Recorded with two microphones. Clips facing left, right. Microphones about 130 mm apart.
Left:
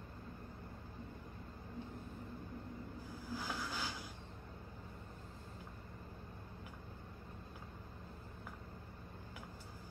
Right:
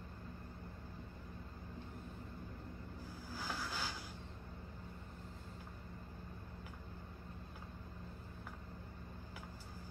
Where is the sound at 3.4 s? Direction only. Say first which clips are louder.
Right 1 dB; centre (ahead or behind).